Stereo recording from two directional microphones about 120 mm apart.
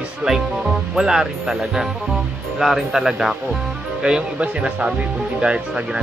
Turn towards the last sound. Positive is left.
turn(degrees=-5)  # may be behind; listen again after turning